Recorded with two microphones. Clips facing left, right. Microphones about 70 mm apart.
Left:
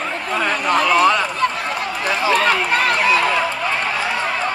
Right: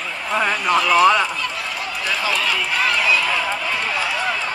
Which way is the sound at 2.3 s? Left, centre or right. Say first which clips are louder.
Left 8 dB; left.